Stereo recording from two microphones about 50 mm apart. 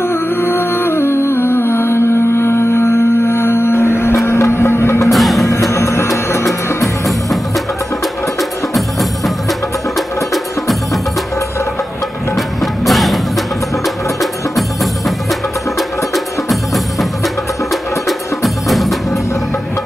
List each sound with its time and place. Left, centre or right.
0.0 s music: left
4.3 s a sound: left
5.0 s music: centre
5.5 s music: left
7.1 s music: centre
12.4 s music: centre
16.4 s music: centre